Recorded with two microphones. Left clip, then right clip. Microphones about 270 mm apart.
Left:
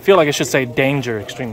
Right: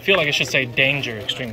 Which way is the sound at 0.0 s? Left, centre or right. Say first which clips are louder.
Left 5 dB; centre.